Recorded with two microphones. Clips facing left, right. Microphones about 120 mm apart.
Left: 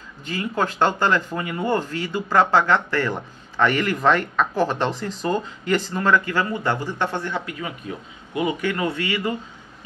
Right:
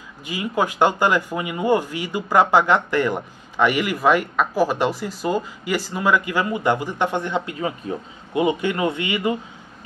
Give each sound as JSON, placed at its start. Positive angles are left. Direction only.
{"t": 0.2, "sound": "speech", "side_deg": -10}